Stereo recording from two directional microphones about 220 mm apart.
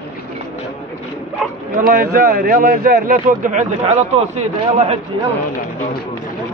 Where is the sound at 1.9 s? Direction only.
40° right (ahead or behind).